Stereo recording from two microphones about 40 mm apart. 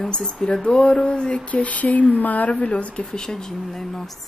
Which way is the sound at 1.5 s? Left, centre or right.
Left.